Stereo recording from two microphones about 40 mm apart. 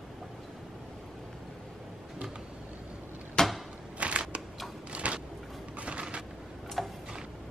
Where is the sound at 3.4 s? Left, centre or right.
Centre.